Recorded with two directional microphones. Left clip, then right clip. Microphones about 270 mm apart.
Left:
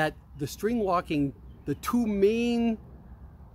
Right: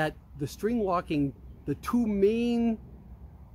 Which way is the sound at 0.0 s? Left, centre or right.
Centre.